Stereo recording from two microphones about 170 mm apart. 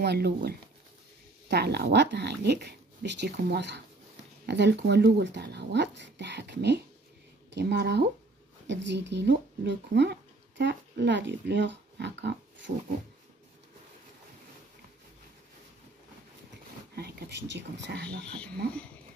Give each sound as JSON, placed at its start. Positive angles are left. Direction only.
{"t": 0.0, "sound": "speech", "side_deg": -70}
{"t": 8.6, "sound": "speech", "side_deg": -90}
{"t": 16.9, "sound": "speech", "side_deg": -70}